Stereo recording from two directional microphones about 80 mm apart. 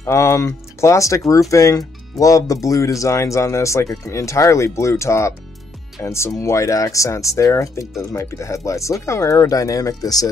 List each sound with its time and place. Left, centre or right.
0.0 s speech: left